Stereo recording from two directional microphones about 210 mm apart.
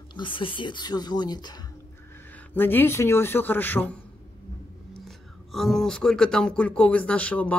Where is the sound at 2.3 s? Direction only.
10° left (ahead or behind).